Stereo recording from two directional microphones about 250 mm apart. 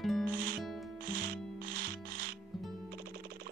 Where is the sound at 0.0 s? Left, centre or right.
Centre.